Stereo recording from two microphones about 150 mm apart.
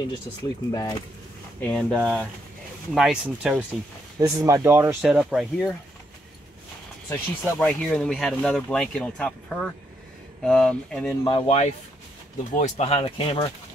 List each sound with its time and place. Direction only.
0.7 s speech: 25° left (ahead or behind)
1.6 s speech: 5° left (ahead or behind)
4.2 s speech: 25° right (ahead or behind)
5.0 s speech: 5° right (ahead or behind)
7.1 s speech: 5° left (ahead or behind)
11.4 s speech: 45° left (ahead or behind)